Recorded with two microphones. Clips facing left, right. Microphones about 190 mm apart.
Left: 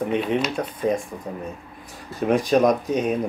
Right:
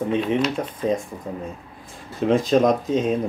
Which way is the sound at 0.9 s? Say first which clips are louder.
Right 1 dB; 20° right (ahead or behind).